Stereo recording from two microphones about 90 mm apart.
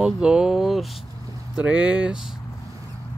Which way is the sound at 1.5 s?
15° right (ahead or behind).